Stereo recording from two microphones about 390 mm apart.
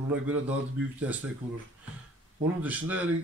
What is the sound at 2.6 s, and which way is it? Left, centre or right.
Speech, centre.